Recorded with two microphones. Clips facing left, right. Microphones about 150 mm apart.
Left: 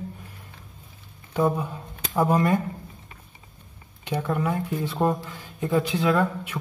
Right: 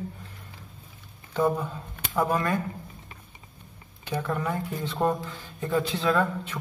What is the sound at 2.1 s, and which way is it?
Speech, 20° left (ahead or behind).